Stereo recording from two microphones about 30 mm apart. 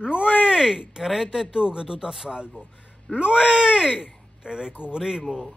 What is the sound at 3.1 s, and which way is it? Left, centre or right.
Speech, right.